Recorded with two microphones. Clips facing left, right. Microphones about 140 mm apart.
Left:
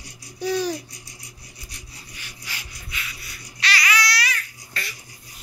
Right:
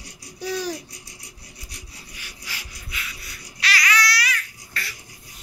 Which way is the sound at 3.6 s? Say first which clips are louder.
Even; centre (ahead or behind).